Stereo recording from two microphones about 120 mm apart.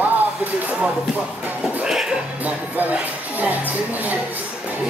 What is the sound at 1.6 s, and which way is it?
Music, 5° right (ahead or behind).